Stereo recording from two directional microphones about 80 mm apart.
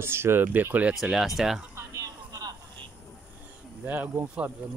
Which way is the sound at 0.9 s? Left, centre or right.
Centre.